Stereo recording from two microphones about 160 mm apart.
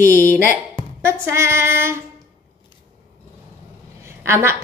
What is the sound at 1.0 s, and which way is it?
Speech, 15° right (ahead or behind).